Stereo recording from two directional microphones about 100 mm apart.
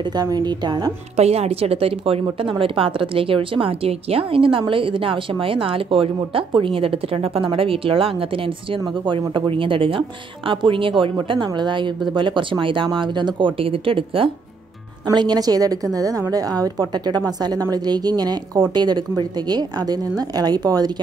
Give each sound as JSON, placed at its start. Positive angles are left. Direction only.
{"t": 0.1, "sound": "a woman's voice", "side_deg": -45}
{"t": 1.1, "sound": "a woman's voice", "side_deg": -90}
{"t": 9.0, "sound": "a woman's voice", "side_deg": -55}
{"t": 15.0, "sound": "a woman's voice", "side_deg": -40}